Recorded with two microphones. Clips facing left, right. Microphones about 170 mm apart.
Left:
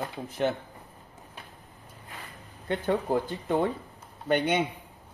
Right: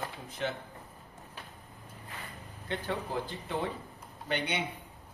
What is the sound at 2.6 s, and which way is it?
Speech, 50° left (ahead or behind).